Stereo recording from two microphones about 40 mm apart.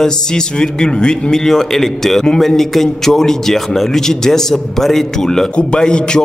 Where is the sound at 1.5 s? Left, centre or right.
Centre.